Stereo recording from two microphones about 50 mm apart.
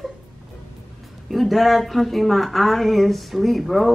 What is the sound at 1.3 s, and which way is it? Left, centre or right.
A woman's voice, centre.